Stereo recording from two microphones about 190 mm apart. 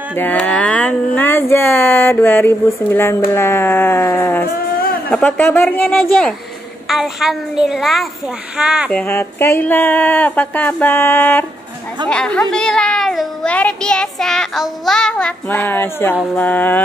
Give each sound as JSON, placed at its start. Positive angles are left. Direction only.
{"t": 0.1, "sound": "a woman's voice", "side_deg": 10}
{"t": 9.0, "sound": "a woman's voice", "side_deg": 10}